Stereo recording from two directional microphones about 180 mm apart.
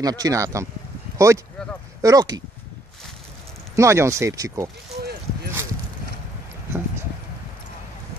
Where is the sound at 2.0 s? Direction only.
20° right (ahead or behind).